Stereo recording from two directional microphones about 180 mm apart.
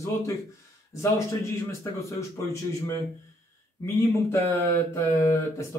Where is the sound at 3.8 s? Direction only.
15° left (ahead or behind).